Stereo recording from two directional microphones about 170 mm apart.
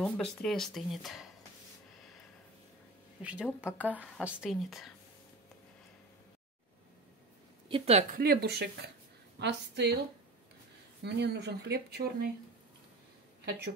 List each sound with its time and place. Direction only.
0.0 s speech: 5° left (ahead or behind)
3.2 s a woman's voice: 10° right (ahead or behind)
7.6 s a woman's voice: 35° right (ahead or behind)
8.1 s speech: 65° right (ahead or behind)
9.4 s a woman's voice: 90° right
11.0 s speech: 85° right